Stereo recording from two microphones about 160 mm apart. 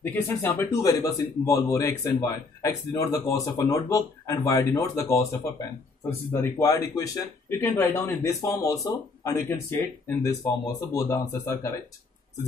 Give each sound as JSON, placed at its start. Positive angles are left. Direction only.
{"t": 0.0, "sound": "a man's voice", "side_deg": 15}